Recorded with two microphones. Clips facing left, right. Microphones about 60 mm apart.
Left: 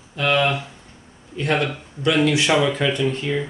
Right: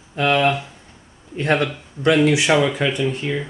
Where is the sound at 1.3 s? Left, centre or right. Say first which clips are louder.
Right 2 dB; right.